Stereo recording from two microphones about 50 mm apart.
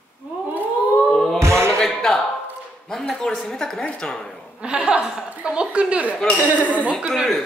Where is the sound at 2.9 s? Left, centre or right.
Centre.